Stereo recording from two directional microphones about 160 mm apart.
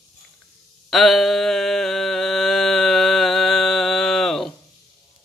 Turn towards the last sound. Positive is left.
turn(degrees=0)  # may be behind; listen again after turning